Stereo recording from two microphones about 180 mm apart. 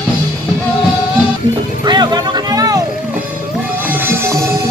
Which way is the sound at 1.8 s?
25° right (ahead or behind).